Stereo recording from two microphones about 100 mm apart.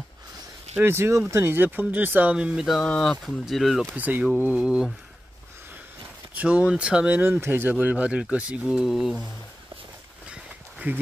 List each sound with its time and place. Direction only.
0.7 s speech: 25° right (ahead or behind); by 2.8 s 5° right (ahead or behind)
2.8 s speech: 10° left (ahead or behind)
3.8 s speech: 20° right (ahead or behind)
6.3 s speech: 15° right (ahead or behind)
10.3 s a sound: 15° right (ahead or behind)